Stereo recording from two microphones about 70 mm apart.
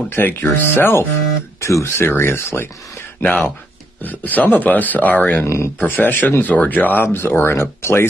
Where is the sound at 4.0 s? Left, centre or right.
Left.